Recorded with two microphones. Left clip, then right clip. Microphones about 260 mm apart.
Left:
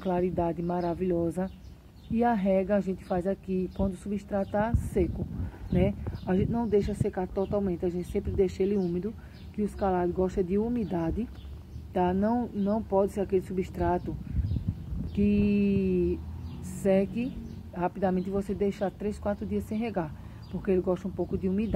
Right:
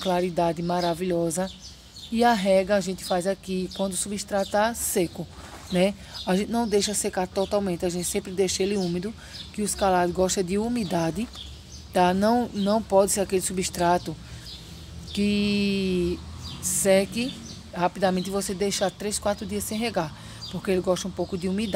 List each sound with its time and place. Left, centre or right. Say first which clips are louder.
0.0 s speech: right 5 dB; centre
12.3 s speech: right 6 dB; right
13.1 s speech: right 3 dB; right
15.2 s speech: right 2 dB; centre